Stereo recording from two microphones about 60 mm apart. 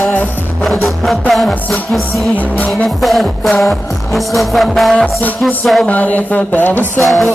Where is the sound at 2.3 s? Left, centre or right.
Left.